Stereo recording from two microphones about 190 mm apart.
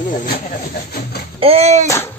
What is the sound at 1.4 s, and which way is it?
Speech, 35° right (ahead or behind).